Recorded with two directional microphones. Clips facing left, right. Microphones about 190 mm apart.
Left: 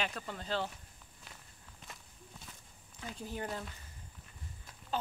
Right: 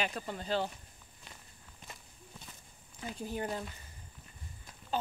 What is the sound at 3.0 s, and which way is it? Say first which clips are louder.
Speech: right 3 dB; 5° right (ahead or behind).